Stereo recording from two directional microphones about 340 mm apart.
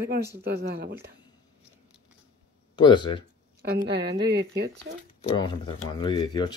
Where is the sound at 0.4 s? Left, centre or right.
Right.